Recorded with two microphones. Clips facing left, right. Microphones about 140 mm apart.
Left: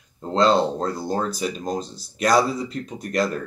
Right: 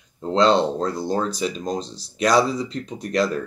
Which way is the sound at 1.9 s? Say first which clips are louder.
Right 1 dB; 55° left (ahead or behind).